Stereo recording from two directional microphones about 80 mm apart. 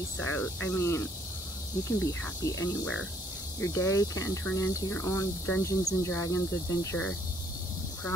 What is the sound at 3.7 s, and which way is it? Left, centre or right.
Speech, left.